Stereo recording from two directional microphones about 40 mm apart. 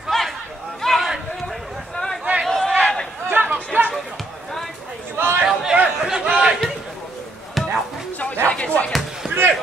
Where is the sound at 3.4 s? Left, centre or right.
Right.